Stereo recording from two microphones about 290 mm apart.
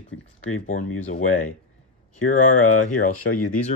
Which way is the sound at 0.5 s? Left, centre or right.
Left.